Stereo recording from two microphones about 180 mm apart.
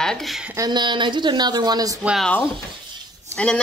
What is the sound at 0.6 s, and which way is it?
A woman's voice, 25° right (ahead or behind).